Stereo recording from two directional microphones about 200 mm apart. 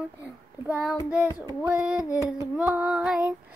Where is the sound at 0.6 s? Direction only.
10° right (ahead or behind).